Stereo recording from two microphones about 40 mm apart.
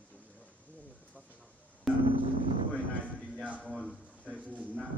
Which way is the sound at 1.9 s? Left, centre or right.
Centre.